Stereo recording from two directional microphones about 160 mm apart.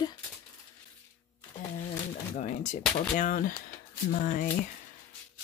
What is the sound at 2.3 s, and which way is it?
Gunshot, 50° left (ahead or behind).